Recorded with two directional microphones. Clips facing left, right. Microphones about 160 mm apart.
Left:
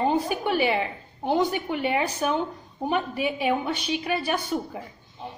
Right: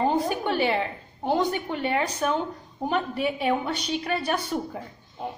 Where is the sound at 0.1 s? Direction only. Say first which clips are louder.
Even; 10° left (ahead or behind).